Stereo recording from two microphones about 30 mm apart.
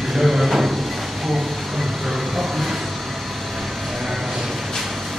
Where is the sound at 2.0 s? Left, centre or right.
Centre.